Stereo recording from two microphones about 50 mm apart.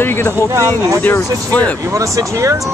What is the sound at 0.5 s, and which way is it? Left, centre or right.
Speech, right.